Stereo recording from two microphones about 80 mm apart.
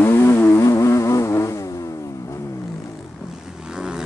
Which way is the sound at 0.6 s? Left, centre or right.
Left.